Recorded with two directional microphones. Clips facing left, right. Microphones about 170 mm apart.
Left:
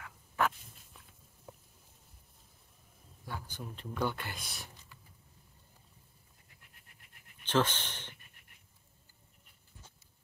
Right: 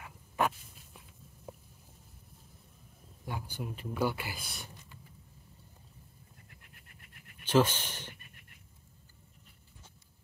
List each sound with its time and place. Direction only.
0.4 s walk: 15° right (ahead or behind)
3.3 s speech: 10° right (ahead or behind)
7.4 s speech: 10° right (ahead or behind)